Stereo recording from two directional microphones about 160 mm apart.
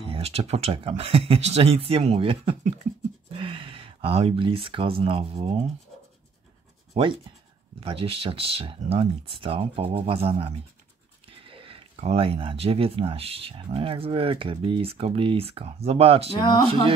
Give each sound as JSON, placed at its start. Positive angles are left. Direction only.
{"t": 0.1, "sound": "speech", "side_deg": -40}
{"t": 6.9, "sound": "speech", "side_deg": -30}
{"t": 16.3, "sound": "speech", "side_deg": 25}